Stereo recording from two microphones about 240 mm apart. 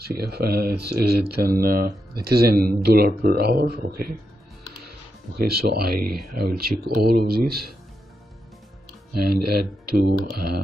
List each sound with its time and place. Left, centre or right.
0.0 s speech: right
5.4 s speech: right
9.4 s speech: right
9.8 s speech: right